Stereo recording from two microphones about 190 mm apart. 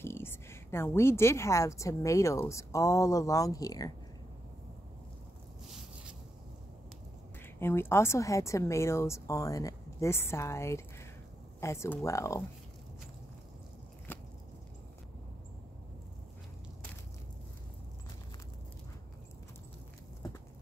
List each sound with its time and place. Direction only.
0.0 s a woman's voice: 10° left (ahead or behind)
7.6 s speech: 10° left (ahead or behind)
14.1 s a sound: 10° left (ahead or behind)